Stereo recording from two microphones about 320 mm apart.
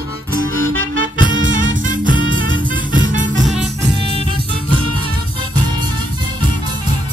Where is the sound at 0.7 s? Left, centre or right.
Right.